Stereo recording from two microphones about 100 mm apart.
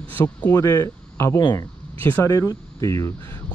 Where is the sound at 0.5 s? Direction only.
25° left (ahead or behind).